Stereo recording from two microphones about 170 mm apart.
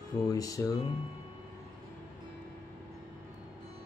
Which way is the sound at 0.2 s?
20° left (ahead or behind).